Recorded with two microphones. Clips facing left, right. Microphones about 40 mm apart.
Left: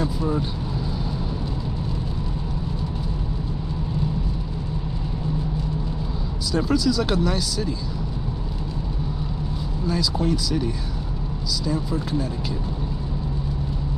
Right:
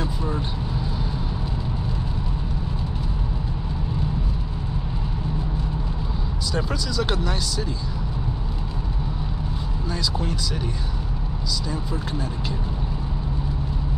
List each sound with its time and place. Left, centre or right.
6.5 s speech: centre
9.8 s speech: centre
11.6 s speech: centre